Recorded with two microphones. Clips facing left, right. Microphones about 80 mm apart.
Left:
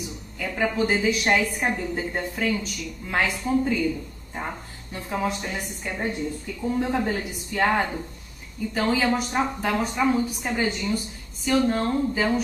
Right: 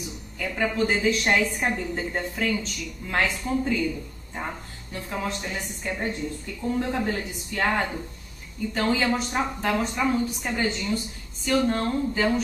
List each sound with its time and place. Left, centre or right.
0.4 s a woman's voice: centre
5.1 s a woman's voice: centre